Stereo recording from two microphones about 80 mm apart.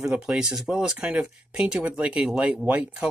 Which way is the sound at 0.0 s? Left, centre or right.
Centre.